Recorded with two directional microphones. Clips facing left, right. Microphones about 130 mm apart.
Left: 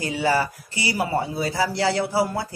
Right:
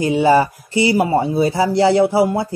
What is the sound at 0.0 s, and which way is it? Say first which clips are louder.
Speech: right 9 dB; 20° right (ahead or behind).